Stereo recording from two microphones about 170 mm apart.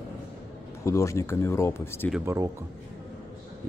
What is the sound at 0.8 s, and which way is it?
Speech, 15° left (ahead or behind).